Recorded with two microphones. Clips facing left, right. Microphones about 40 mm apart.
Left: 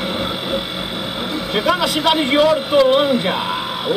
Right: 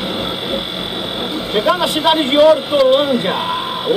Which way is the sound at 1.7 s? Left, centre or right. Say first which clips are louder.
Right 1 dB; right.